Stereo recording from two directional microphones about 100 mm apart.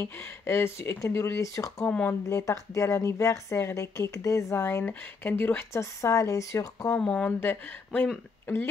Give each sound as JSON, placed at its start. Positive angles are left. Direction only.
{"t": 0.0, "sound": "speech", "side_deg": 25}
{"t": 1.9, "sound": "speech", "side_deg": 15}
{"t": 2.2, "sound": "a woman's voice", "side_deg": 30}
{"t": 7.0, "sound": "speech", "side_deg": 10}
{"t": 7.2, "sound": "speech", "side_deg": 20}